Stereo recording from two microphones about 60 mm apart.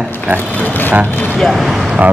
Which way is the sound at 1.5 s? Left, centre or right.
Centre.